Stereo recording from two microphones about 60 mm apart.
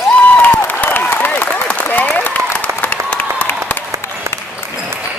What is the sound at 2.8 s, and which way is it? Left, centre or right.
Applause, left.